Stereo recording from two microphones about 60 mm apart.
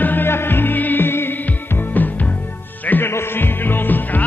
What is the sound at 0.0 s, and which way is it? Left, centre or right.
Music, left.